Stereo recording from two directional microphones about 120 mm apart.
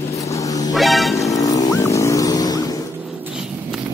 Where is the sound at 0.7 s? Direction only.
Centre (ahead or behind).